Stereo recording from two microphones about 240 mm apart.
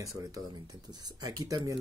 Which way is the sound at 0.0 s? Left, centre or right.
Centre.